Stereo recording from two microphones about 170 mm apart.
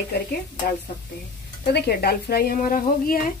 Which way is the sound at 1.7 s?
70° left (ahead or behind).